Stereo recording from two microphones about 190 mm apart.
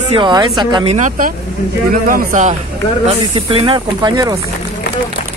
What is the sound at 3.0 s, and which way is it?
Speech, 30° right (ahead or behind).